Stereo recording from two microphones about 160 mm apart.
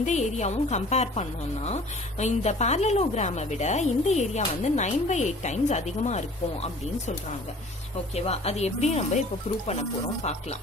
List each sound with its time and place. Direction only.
0.0 s a woman's voice: 45° left (ahead or behind)